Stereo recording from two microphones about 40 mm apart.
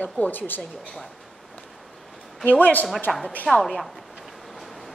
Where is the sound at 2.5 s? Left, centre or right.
Left.